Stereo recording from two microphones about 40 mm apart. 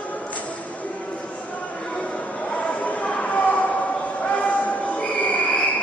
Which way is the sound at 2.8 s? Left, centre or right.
Left.